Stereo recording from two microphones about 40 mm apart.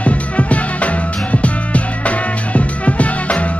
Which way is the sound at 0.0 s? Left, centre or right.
Left.